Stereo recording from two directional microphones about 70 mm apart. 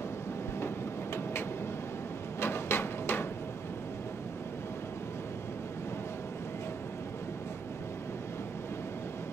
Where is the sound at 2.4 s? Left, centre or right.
Left.